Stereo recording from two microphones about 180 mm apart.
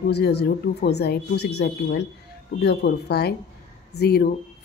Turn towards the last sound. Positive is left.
turn(degrees=60)  # may be behind; listen again after turning